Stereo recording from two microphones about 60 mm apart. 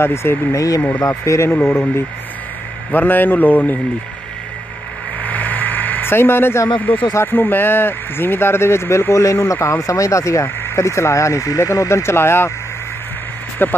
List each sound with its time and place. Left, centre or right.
0.0 s speech: left
0.6 s speech: left
0.9 s speech: left
1.3 s speech: left
1.6 s a man's voice: left
5.2 s a sound: left
6.8 s a man's voice: left
13.6 s a man's voice: left